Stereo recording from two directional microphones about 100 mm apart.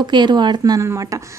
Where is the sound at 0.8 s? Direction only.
30° right (ahead or behind).